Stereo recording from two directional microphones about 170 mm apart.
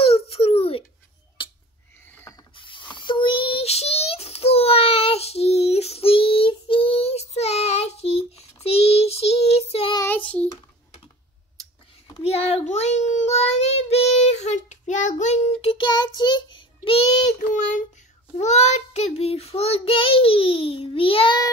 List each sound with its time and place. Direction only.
0.0 s a sound: 35° left (ahead or behind)
2.0 s pulleys: 15° left (ahead or behind)
2.5 s child singing: 30° left (ahead or behind)
9.9 s child singing: 10° left (ahead or behind)
12.2 s child singing: 35° left (ahead or behind)